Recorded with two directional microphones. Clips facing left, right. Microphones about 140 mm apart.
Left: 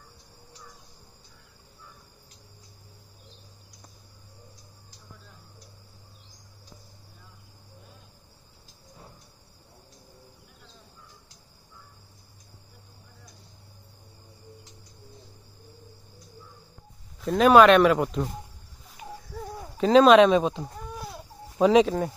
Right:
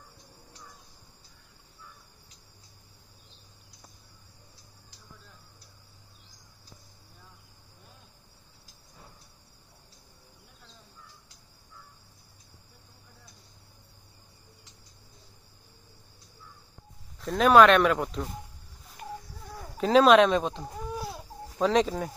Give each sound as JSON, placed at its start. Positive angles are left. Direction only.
{"t": 17.2, "sound": "speech", "side_deg": 0}
{"t": 19.0, "sound": "a sound", "side_deg": 0}
{"t": 19.8, "sound": "speech", "side_deg": 0}